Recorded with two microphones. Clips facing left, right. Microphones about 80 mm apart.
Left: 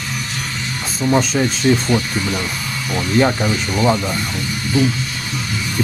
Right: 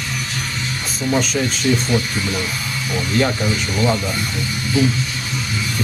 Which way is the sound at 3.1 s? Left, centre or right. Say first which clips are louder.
Left 3 dB; centre.